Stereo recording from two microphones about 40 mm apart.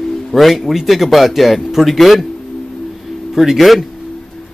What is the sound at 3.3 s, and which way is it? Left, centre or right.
Speech, centre.